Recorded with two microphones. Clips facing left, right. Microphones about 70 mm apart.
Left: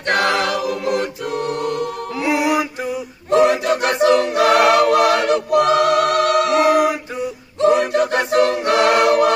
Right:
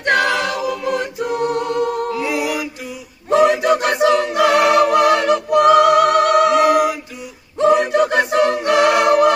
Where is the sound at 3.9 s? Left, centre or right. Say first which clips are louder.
Even; right.